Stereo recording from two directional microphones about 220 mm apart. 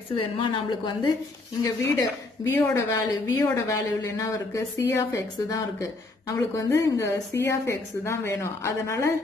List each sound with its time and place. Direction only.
0.1 s a woman's voice: 20° left (ahead or behind)